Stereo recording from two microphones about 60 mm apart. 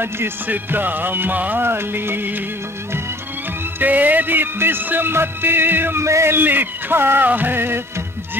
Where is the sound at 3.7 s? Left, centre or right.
Right.